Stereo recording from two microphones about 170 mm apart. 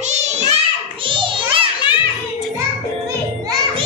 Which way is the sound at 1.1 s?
30° right (ahead or behind).